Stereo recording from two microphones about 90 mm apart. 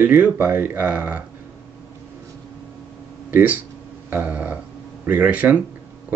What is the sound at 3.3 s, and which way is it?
Speech, 20° right (ahead or behind).